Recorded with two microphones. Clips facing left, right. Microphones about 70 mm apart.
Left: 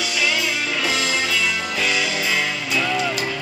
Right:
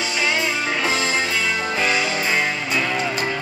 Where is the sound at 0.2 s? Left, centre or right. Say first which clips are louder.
Right 1 dB; right.